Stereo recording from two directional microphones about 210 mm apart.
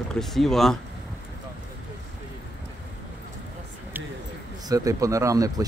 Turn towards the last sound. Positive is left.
turn(degrees=-15)  # may be behind; listen again after turning